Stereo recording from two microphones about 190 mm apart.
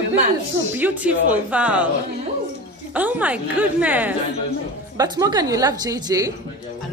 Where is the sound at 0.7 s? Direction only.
10° right (ahead or behind).